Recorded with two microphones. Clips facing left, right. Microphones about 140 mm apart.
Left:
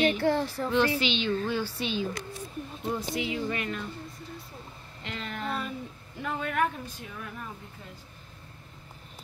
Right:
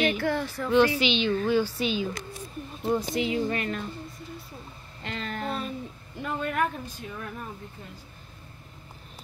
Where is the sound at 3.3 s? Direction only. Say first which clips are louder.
Right 4 dB; 40° right (ahead or behind).